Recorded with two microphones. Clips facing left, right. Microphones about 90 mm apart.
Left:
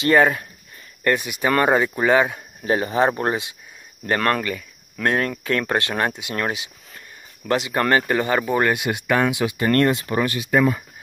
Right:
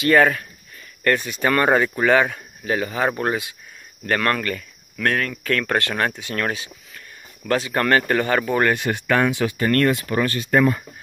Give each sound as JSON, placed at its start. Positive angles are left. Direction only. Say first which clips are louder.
{"t": 0.0, "sound": "speech", "louder": "even", "side_deg": 25}
{"t": 2.6, "sound": "speech", "louder": "left 3 dB", "side_deg": 30}